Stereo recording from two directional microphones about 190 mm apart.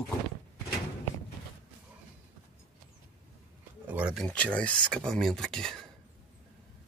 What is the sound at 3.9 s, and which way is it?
Speech, 5° right (ahead or behind).